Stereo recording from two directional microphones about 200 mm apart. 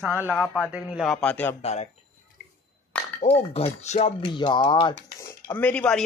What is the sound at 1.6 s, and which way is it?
Speech, 35° left (ahead or behind).